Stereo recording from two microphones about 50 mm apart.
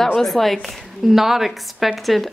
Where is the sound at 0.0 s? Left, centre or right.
Centre.